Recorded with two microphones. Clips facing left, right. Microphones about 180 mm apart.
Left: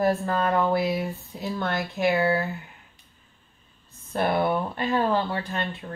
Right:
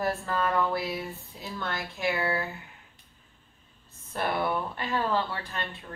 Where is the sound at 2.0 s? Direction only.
20° left (ahead or behind).